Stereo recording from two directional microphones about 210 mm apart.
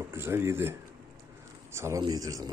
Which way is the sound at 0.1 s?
10° right (ahead or behind).